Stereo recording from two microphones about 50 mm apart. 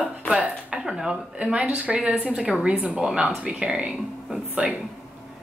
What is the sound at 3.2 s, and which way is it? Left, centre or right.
Speech, right.